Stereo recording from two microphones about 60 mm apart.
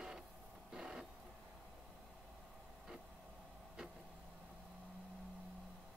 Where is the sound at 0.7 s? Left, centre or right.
Centre.